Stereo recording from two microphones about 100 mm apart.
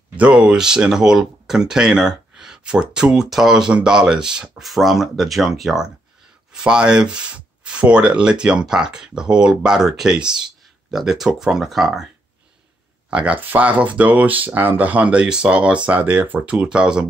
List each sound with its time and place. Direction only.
0.2 s speech: 10° right (ahead or behind)
13.1 s speech: 15° right (ahead or behind)